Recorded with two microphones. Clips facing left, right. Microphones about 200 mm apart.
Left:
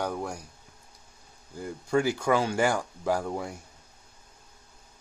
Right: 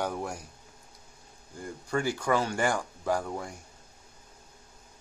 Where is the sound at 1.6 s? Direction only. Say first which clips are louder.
Left 4 dB; 10° left (ahead or behind).